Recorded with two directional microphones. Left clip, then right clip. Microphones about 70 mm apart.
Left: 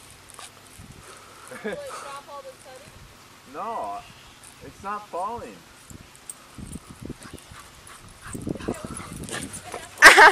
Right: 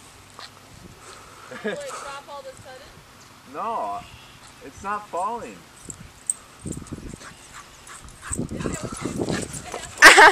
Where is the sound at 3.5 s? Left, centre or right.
Right.